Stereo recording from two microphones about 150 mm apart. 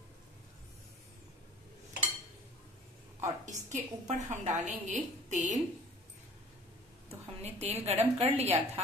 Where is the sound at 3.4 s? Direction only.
55° right (ahead or behind).